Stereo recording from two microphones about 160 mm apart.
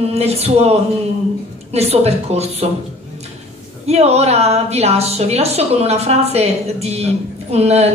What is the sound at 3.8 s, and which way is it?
A woman's voice, 40° right (ahead or behind).